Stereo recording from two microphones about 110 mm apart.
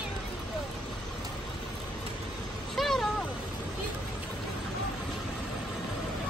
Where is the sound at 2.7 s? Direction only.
Centre (ahead or behind).